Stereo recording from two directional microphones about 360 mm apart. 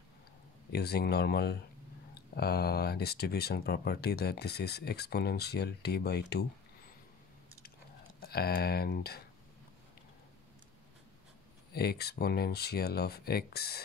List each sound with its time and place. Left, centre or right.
0.7 s speech: left
8.2 s speech: left
11.7 s speech: left